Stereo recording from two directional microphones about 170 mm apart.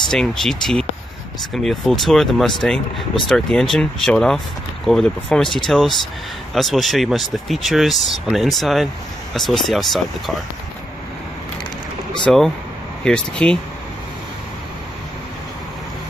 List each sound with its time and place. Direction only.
0.1 s speech: 5° left (ahead or behind)
12.3 s speech: centre (ahead or behind)